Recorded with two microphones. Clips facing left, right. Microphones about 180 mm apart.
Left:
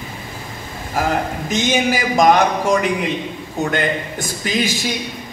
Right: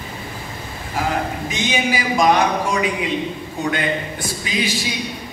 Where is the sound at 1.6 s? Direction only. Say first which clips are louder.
Left 3 dB; 45° left (ahead or behind).